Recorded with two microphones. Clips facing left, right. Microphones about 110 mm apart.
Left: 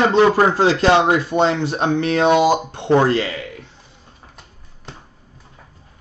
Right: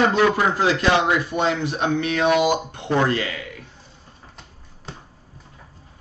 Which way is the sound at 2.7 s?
30° left (ahead or behind).